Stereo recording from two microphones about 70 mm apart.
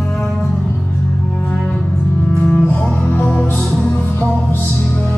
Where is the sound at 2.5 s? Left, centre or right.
Left.